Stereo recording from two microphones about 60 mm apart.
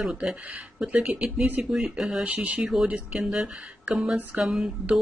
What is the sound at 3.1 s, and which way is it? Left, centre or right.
Speech, centre.